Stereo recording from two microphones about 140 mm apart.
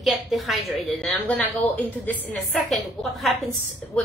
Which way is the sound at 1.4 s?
10° left (ahead or behind).